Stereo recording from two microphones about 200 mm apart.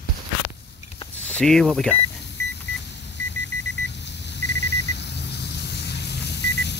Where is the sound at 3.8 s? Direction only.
60° left (ahead or behind).